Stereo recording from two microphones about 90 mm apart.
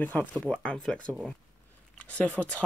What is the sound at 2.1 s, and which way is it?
Speech, 15° left (ahead or behind).